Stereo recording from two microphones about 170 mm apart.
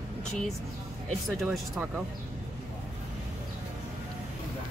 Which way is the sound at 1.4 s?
Centre (ahead or behind).